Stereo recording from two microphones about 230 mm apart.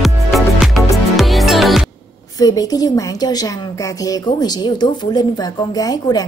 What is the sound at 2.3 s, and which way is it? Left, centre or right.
A woman's voice, centre.